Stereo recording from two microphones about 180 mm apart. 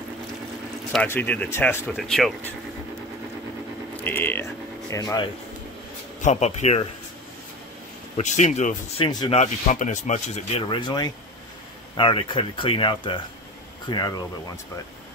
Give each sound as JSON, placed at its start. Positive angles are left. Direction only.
{"t": 1.0, "sound": "speech", "side_deg": 10}
{"t": 2.0, "sound": "speech", "side_deg": 0}
{"t": 3.9, "sound": "speech", "side_deg": 10}
{"t": 6.2, "sound": "speech", "side_deg": 40}
{"t": 8.2, "sound": "speech", "side_deg": 40}
{"t": 9.3, "sound": "speech", "side_deg": 40}